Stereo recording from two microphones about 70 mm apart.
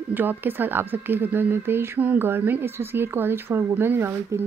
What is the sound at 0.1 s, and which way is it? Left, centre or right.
A woman's voice, right.